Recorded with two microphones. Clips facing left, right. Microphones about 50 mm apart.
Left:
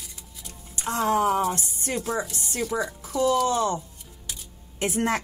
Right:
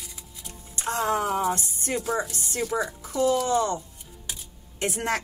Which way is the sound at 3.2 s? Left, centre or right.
Right.